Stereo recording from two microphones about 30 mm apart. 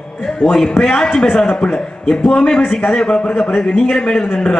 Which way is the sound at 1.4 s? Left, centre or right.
Left.